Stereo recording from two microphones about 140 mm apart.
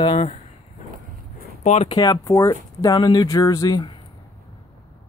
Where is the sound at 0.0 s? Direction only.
35° left (ahead or behind).